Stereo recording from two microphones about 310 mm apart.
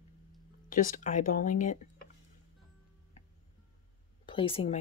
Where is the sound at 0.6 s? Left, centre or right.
Left.